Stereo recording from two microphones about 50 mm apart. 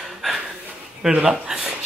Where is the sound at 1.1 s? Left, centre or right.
Right.